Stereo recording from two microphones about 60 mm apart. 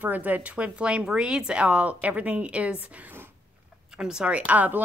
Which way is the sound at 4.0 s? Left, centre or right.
Centre.